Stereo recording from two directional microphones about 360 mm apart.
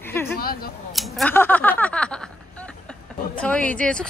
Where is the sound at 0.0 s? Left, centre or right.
Centre.